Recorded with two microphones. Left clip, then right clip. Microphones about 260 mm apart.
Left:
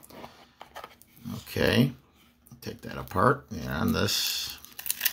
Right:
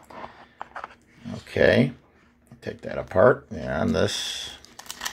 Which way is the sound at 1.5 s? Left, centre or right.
Left.